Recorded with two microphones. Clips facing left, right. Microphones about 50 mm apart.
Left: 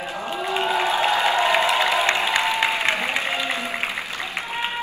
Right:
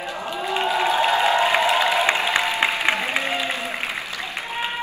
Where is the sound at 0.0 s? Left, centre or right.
Left.